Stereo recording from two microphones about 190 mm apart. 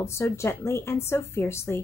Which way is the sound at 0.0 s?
15° left (ahead or behind).